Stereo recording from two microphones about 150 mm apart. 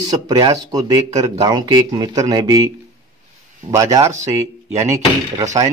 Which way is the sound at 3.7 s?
20° right (ahead or behind).